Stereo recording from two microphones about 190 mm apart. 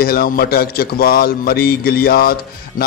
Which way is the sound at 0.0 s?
50° left (ahead or behind).